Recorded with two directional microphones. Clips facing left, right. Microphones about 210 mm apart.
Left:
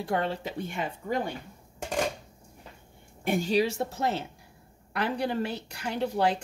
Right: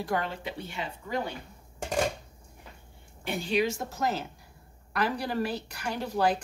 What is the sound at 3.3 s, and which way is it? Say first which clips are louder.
A woman's voice: left 3 dB; 45° left (ahead or behind).